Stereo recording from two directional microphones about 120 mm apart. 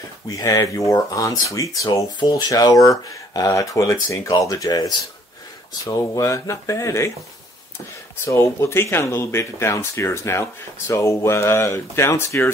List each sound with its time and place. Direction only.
0.4 s speech: 30° left (ahead or behind)
8.3 s speech: 25° left (ahead or behind)